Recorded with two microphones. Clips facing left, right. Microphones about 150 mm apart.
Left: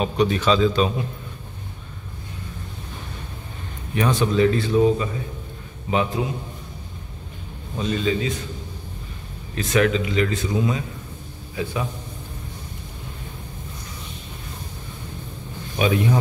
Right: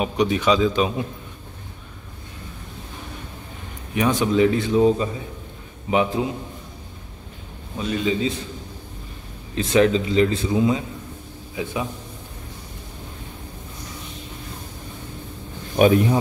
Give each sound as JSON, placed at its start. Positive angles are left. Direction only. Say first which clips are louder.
{"t": 0.0, "sound": "speech", "louder": "even", "side_deg": -15}
{"t": 3.9, "sound": "speech", "louder": "right 1 dB", "side_deg": -15}
{"t": 4.8, "sound": "speech", "louder": "right 1 dB", "side_deg": -30}
{"t": 5.9, "sound": "speech", "louder": "right 2 dB", "side_deg": -15}
{"t": 7.7, "sound": "speech", "louder": "even", "side_deg": -5}
{"t": 9.6, "sound": "speech", "louder": "right 2 dB", "side_deg": -25}
{"t": 15.7, "sound": "speech", "louder": "right 6 dB", "side_deg": -45}